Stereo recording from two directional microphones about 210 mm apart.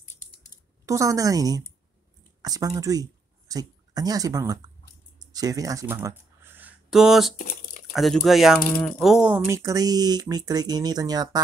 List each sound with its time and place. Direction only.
0.8 s speech: 15° right (ahead or behind)
7.3 s crumpling: 40° left (ahead or behind)
7.9 s speech: centre (ahead or behind); by 11.4 s 20° right (ahead or behind)